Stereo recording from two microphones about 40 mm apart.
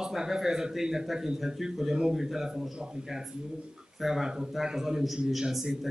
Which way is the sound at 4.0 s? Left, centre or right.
Centre.